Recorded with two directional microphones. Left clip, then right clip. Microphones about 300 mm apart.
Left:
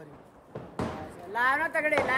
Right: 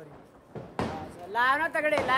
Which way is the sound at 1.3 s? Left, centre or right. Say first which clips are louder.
Right 1 dB; centre.